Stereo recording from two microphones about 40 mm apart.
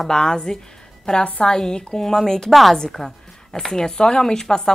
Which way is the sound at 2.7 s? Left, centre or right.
Centre.